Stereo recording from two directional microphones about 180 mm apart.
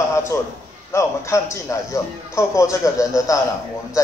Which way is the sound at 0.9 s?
15° left (ahead or behind).